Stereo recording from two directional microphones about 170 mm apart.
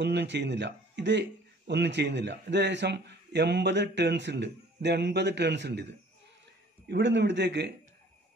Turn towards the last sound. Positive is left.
turn(degrees=-90)